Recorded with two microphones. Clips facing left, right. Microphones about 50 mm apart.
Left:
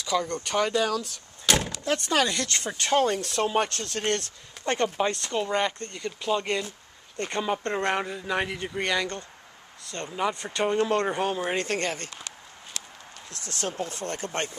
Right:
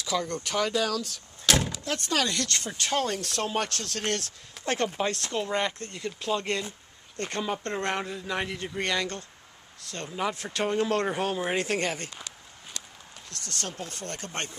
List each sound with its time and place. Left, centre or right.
0.0 s speech: centre
13.3 s speech: right
13.6 s speech: left